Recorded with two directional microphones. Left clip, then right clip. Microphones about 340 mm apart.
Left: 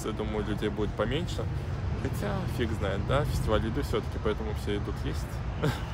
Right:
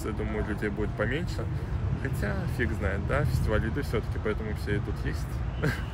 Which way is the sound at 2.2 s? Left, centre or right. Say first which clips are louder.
Right 1 dB; centre.